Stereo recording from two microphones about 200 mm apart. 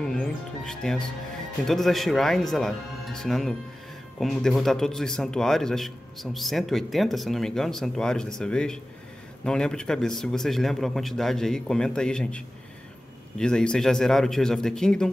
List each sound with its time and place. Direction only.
0.0 s a man's voice: 5° left (ahead or behind)